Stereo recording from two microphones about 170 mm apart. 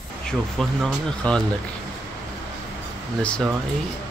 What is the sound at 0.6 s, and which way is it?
Speech, centre (ahead or behind).